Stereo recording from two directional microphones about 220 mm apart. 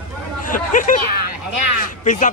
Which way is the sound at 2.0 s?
35° left (ahead or behind).